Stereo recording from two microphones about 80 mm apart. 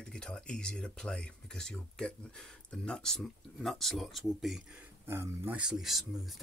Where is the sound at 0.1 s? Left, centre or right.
Centre.